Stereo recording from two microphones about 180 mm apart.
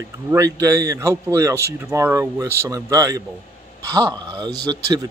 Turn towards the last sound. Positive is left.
turn(degrees=-20)  # may be behind; listen again after turning